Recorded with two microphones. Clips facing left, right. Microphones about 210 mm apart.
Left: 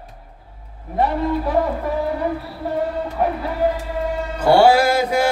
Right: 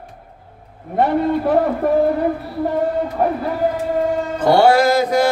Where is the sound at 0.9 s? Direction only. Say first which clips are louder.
Right 3 dB; 55° right (ahead or behind).